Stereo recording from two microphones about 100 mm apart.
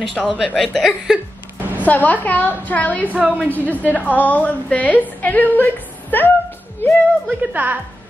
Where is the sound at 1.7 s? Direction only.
15° left (ahead or behind).